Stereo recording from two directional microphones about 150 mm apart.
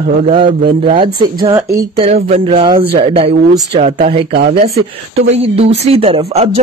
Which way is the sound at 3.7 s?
50° right (ahead or behind).